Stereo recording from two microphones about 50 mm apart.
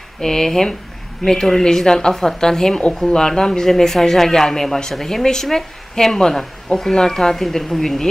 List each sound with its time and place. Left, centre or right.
0.2 s speech: centre